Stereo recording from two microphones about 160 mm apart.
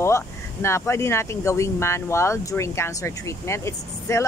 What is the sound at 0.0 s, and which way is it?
Speech, 15° left (ahead or behind).